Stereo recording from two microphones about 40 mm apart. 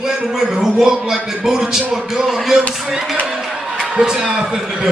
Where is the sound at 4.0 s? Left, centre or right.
Centre.